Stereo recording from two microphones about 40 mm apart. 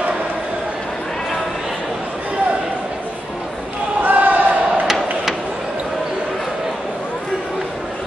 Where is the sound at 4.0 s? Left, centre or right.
Right.